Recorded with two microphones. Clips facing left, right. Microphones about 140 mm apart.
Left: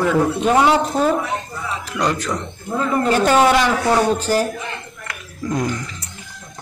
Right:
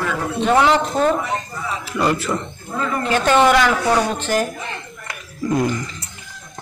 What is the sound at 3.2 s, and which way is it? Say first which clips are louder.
Speech: right 1 dB; 10° left (ahead or behind).